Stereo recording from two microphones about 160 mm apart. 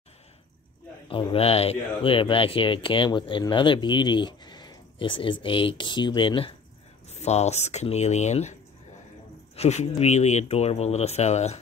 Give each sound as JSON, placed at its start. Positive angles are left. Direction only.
{"t": 1.0, "sound": "speech", "side_deg": 35}
{"t": 7.1, "sound": "speech", "side_deg": 45}
{"t": 9.6, "sound": "speech", "side_deg": 40}